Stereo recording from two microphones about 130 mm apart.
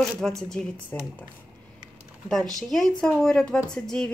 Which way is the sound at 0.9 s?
20° left (ahead or behind).